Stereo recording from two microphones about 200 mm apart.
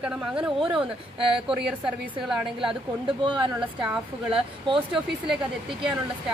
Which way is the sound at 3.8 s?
5° right (ahead or behind).